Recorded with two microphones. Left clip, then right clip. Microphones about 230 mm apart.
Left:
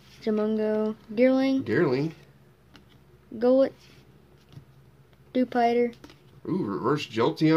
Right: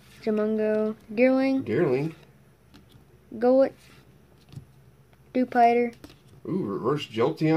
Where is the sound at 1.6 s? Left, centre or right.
Left.